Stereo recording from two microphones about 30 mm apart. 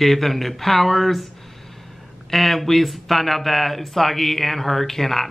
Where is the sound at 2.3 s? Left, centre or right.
Centre.